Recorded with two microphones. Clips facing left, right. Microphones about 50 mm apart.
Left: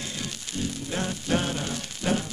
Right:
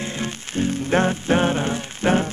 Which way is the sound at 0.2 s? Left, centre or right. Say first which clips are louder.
Right 9 dB; right.